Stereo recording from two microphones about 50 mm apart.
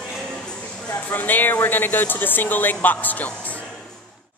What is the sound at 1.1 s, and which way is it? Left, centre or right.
A woman's voice, left.